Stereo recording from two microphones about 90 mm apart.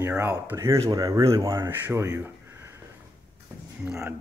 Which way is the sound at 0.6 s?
40° right (ahead or behind).